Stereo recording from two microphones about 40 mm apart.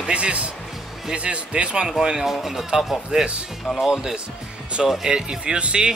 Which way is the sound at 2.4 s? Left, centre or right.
Centre.